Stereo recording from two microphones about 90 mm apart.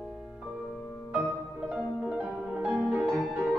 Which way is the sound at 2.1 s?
10° right (ahead or behind).